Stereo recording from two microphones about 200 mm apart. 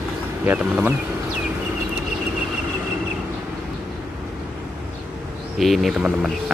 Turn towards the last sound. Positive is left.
turn(degrees=0)  # may be behind; listen again after turning